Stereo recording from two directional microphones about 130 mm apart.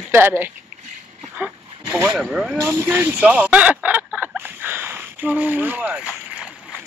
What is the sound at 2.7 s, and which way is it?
Speech, 20° right (ahead or behind).